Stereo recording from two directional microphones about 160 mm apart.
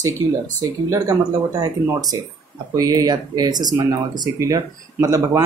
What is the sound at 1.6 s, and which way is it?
Speech, 25° right (ahead or behind).